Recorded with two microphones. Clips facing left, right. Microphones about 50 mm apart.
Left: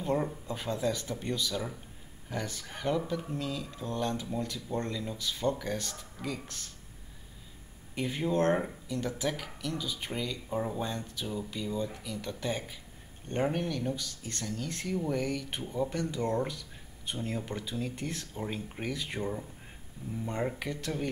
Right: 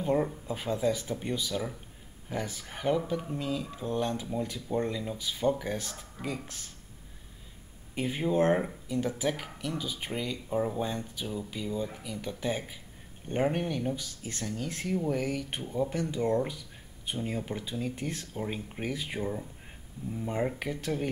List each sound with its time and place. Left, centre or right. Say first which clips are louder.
0.0 s speech: right 3 dB; centre
7.9 s speech: right 2 dB; centre
16.4 s a sound: right 1 dB; centre
17.5 s speech: right 1 dB; centre